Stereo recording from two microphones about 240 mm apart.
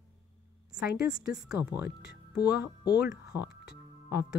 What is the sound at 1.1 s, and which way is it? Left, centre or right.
Speech, centre.